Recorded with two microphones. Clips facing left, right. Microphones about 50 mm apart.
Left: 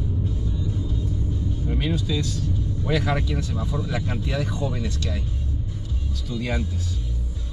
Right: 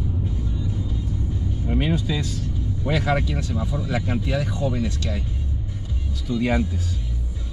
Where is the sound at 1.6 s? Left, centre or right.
Right.